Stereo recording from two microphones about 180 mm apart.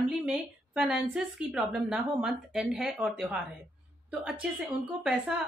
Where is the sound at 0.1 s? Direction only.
5° right (ahead or behind).